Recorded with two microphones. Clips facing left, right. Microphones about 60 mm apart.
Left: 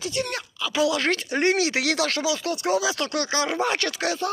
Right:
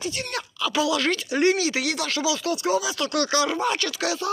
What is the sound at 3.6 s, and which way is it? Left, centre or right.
Speech, left.